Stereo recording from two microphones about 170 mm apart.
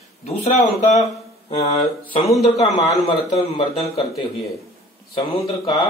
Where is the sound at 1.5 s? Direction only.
40° left (ahead or behind).